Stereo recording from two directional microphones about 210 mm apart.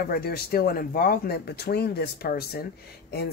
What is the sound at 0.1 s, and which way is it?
Speech, 45° left (ahead or behind).